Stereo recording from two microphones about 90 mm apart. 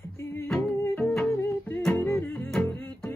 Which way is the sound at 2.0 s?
10° left (ahead or behind).